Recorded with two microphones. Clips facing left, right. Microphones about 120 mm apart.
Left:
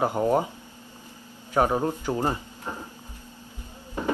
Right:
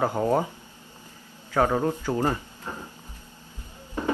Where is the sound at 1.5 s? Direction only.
20° left (ahead or behind).